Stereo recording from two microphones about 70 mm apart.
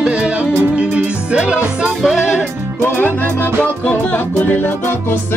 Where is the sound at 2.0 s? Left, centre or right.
Centre.